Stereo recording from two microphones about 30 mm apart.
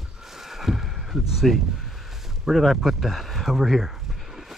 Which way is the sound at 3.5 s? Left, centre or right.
Centre.